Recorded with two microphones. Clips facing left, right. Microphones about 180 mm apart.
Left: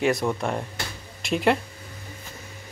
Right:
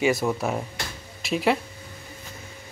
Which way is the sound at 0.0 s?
5° right (ahead or behind).